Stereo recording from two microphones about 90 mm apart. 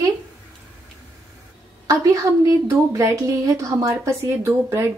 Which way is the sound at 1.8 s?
35° right (ahead or behind).